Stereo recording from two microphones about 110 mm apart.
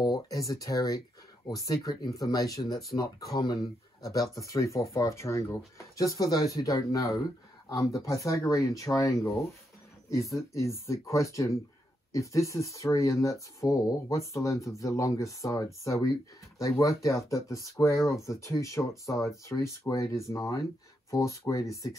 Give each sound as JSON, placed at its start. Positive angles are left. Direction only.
{"t": 0.0, "sound": "speech", "side_deg": 30}